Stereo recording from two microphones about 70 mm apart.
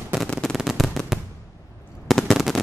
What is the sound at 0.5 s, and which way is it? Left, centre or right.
Fireworks, centre.